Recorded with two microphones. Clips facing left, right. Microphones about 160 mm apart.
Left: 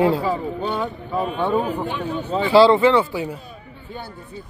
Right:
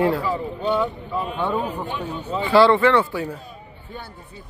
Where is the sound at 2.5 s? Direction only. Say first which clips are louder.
Left 2 dB; 30° left (ahead or behind).